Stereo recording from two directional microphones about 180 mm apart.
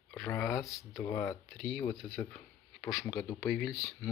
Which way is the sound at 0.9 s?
15° left (ahead or behind).